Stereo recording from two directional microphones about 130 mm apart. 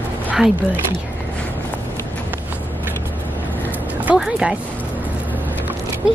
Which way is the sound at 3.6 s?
10° right (ahead or behind).